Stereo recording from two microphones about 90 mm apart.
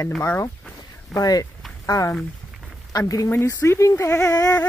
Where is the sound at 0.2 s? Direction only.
25° left (ahead or behind).